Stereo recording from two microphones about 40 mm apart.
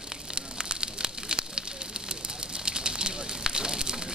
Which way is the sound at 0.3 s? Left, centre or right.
Centre.